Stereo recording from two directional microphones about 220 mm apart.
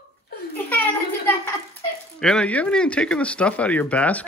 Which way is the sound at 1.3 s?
10° left (ahead or behind).